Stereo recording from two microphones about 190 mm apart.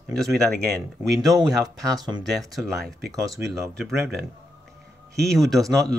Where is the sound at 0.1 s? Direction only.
Centre (ahead or behind).